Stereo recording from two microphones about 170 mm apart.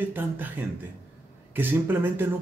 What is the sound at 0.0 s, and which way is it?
Speech, 10° right (ahead or behind).